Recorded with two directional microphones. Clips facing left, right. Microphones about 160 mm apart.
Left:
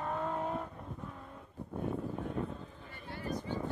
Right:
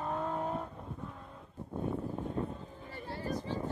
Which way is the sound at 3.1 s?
30° right (ahead or behind).